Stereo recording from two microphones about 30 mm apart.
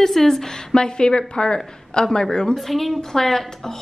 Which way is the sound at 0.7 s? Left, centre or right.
Left.